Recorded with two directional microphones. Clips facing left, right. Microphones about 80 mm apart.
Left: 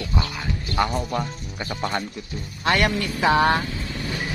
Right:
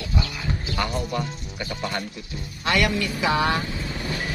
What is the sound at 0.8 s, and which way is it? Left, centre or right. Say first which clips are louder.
Speech: left 4 dB; left.